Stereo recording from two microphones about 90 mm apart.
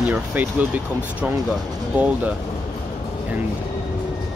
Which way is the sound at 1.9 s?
15° right (ahead or behind).